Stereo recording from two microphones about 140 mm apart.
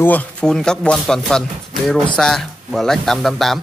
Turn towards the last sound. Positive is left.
turn(degrees=0)  # may be behind; listen again after turning